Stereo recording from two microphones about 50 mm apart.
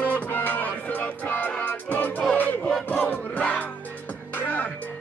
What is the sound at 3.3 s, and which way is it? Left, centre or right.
Music, left.